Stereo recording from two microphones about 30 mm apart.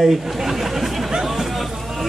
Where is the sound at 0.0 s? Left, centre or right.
Centre.